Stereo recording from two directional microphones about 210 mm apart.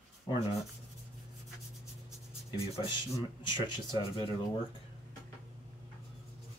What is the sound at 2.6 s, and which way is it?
Speech, 25° left (ahead or behind).